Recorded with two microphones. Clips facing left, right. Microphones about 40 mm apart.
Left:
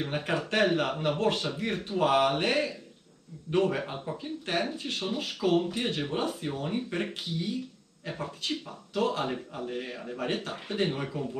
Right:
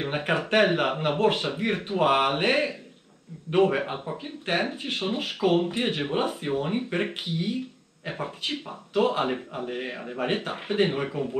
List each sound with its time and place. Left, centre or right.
0.0 s speech: right